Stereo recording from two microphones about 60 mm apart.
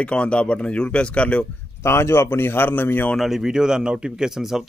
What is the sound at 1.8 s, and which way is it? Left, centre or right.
Speech, left.